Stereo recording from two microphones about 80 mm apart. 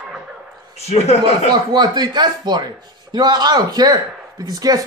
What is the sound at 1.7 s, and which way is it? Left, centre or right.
Speech, right.